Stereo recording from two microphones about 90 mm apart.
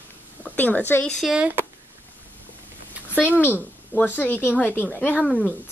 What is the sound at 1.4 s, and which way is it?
Speech, 20° right (ahead or behind).